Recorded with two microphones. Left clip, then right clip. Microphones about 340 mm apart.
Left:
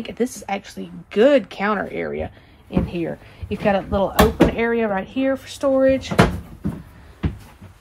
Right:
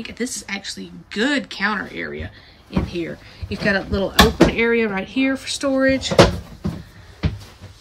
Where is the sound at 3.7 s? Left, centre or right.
Left.